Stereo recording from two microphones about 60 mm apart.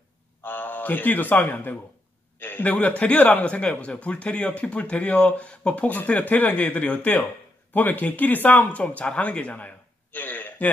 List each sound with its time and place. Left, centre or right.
0.4 s a man's voice: left